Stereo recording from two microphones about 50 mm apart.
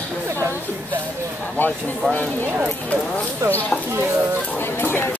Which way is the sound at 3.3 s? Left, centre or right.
Right.